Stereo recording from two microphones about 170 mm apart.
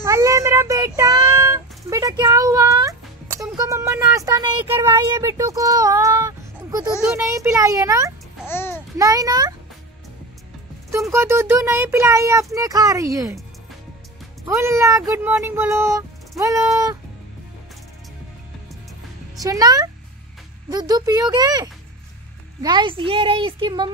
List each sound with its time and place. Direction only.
0.0 s child singing: 15° right (ahead or behind)
1.4 s music: 15° right (ahead or behind)
4.7 s child singing: 20° right (ahead or behind)
8.5 s babbling: 15° left (ahead or behind)
8.9 s child singing: 20° right (ahead or behind)
10.9 s speech: 15° right (ahead or behind)
14.4 s speech: 15° right (ahead or behind)
19.4 s child singing: 20° right (ahead or behind)